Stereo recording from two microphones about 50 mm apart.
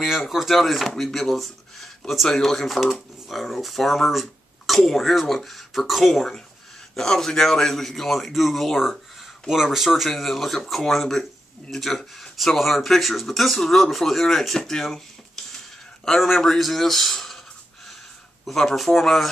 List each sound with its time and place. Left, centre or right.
0.0 s speech: centre
18.4 s speech: centre